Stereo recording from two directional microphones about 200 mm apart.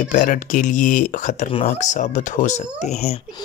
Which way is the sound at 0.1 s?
40° left (ahead or behind).